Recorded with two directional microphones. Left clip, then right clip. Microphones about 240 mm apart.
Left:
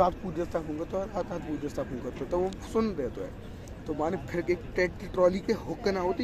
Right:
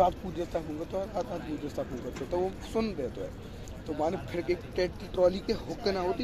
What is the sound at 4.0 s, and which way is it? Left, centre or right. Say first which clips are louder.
Speech: even; left.